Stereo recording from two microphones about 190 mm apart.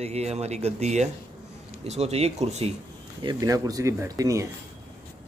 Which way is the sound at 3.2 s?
20° right (ahead or behind).